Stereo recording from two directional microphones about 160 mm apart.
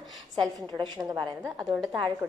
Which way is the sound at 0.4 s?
25° right (ahead or behind).